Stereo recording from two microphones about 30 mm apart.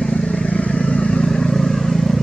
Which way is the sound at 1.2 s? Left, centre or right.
Left.